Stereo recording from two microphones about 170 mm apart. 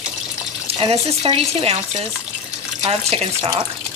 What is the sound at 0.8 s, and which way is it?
Speech, 35° right (ahead or behind).